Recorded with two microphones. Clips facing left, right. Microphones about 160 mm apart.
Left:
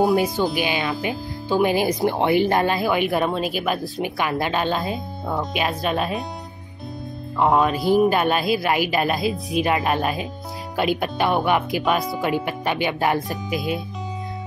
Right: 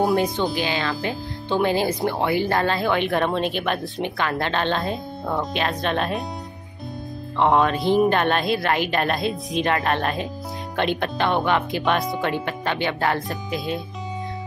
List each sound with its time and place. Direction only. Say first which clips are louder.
0.0 s a woman's voice: left 2 dB; 5° left (ahead or behind)
0.6 s a woman's voice: left 1 dB; 15° left (ahead or behind)
7.3 s a woman's voice: even; 5° left (ahead or behind)